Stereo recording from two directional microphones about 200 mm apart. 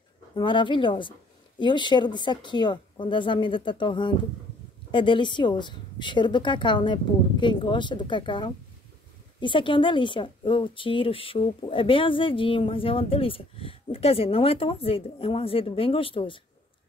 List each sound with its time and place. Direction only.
0.3 s a woman's voice: 25° left (ahead or behind)